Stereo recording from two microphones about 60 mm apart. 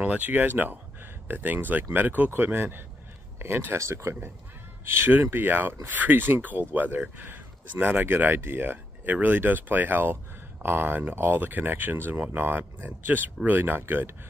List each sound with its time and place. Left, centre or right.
0.0 s speech: right